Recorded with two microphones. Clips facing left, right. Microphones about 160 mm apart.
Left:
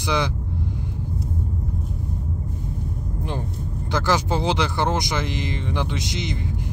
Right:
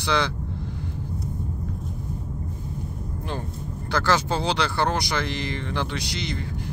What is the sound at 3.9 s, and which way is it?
Speech, 15° left (ahead or behind).